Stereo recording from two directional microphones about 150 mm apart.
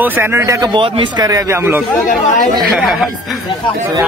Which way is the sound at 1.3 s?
20° right (ahead or behind).